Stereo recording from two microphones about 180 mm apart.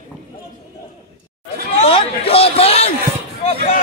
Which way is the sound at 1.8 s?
30° left (ahead or behind).